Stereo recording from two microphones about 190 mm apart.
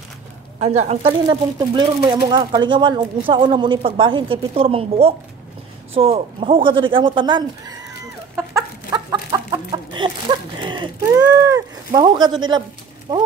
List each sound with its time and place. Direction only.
0.6 s speech: 35° right (ahead or behind)
8.4 s chicken: 20° right (ahead or behind)
10.6 s speech: 25° right (ahead or behind)